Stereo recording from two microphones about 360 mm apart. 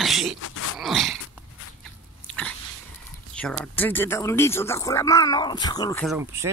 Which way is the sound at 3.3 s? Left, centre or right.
Centre.